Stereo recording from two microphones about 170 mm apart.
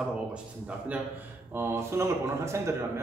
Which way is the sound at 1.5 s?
15° right (ahead or behind).